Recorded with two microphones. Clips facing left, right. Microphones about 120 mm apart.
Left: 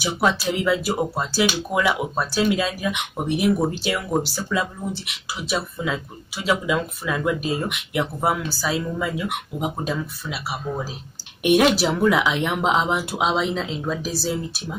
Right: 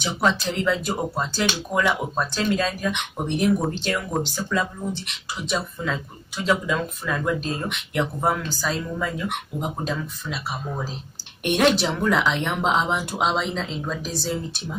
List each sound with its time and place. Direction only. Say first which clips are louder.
0.0 s speech: left 1 dB; 5° left (ahead or behind)